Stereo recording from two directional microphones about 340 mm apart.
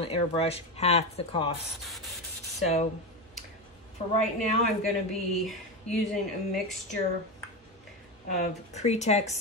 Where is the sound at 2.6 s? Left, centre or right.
Centre.